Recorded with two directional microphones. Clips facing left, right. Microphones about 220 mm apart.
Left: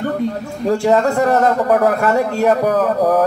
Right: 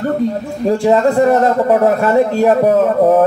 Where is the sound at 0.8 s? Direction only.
25° right (ahead or behind).